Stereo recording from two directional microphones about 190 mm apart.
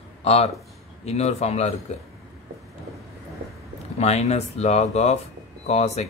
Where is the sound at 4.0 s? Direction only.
35° left (ahead or behind).